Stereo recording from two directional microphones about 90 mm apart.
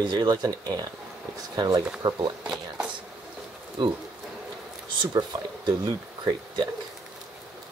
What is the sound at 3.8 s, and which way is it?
Speech, 60° right (ahead or behind).